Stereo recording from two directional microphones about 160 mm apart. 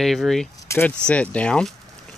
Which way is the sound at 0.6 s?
15° left (ahead or behind).